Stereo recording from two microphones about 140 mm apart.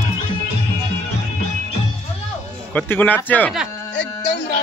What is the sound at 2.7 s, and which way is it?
Speech, 10° left (ahead or behind).